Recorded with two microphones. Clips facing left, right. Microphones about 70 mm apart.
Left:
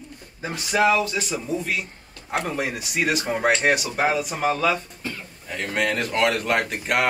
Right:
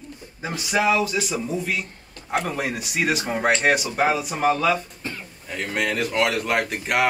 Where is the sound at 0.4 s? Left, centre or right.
Centre.